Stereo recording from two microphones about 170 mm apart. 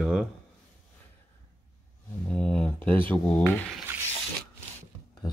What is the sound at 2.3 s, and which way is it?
Speech, 5° left (ahead or behind).